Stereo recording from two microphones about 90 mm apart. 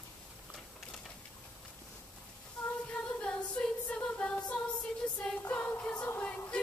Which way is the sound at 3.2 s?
10° left (ahead or behind).